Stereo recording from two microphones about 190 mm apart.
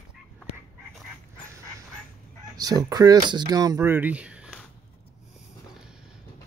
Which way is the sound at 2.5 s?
20° right (ahead or behind).